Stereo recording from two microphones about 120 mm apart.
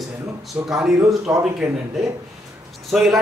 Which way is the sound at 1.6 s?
25° right (ahead or behind).